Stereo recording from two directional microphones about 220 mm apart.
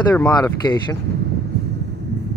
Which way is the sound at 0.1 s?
15° left (ahead or behind).